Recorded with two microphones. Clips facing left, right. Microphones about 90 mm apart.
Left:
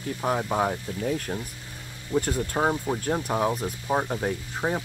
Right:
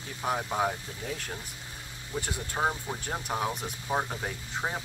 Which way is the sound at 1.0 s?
45° left (ahead or behind).